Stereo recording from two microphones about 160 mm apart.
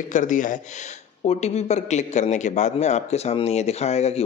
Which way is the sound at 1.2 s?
40° left (ahead or behind).